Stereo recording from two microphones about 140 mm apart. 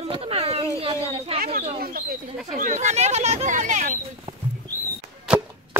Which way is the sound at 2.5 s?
65° right (ahead or behind).